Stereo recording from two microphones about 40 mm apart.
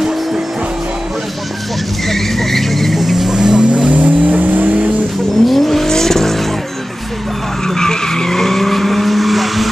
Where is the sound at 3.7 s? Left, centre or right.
Right.